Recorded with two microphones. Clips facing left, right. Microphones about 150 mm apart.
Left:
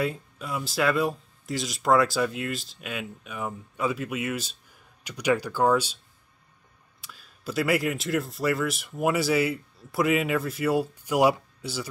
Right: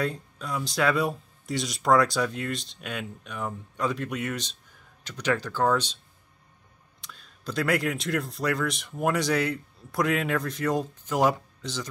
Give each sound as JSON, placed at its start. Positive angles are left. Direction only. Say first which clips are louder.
{"t": 0.0, "sound": "speech", "louder": "left 1 dB", "side_deg": 5}
{"t": 7.0, "sound": "speech", "louder": "right 1 dB", "side_deg": 5}